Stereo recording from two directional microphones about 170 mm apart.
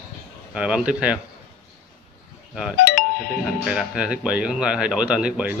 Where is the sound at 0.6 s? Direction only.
5° right (ahead or behind).